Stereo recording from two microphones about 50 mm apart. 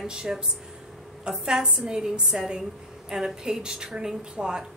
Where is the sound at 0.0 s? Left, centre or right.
Centre.